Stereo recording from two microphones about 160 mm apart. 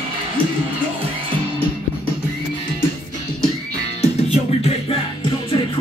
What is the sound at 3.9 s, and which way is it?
Music, 40° left (ahead or behind).